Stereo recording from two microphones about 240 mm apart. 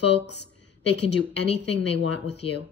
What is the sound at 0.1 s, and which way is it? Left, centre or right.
Speech, left.